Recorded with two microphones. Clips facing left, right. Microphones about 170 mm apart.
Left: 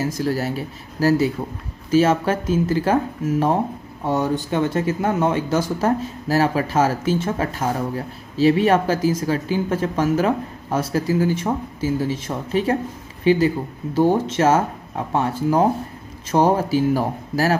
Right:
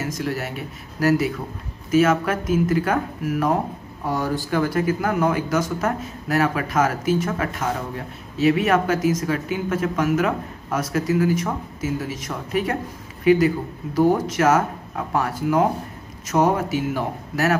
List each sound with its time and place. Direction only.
0.0 s speech: 35° left (ahead or behind)